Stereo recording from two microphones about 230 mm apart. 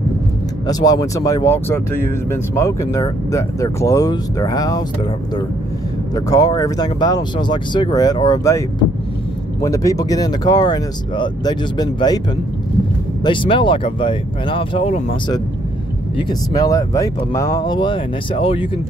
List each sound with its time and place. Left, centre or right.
0.7 s speech: centre
6.1 s speech: centre
13.2 s speech: left